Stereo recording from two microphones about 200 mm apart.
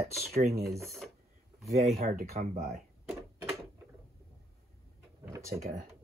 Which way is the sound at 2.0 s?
45° right (ahead or behind).